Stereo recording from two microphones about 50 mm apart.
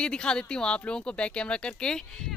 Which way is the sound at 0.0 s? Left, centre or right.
Centre.